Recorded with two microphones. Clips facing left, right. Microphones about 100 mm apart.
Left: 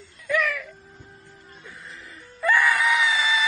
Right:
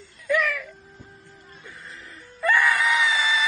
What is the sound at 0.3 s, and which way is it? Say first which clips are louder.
Music: right 1 dB; centre (ahead or behind).